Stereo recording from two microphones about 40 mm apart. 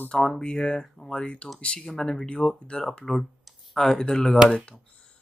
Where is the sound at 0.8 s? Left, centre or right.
Centre.